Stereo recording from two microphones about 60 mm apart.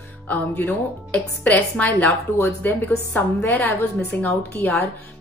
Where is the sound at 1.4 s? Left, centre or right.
Left.